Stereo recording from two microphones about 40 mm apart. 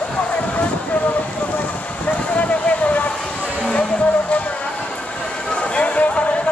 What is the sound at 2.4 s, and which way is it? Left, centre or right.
Vehicle, left.